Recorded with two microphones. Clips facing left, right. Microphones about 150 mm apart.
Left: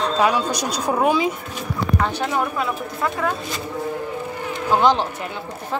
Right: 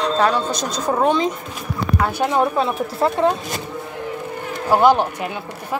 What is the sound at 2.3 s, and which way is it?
Speech, 30° right (ahead or behind).